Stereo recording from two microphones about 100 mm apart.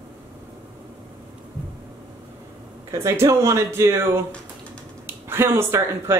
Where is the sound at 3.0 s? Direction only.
30° right (ahead or behind).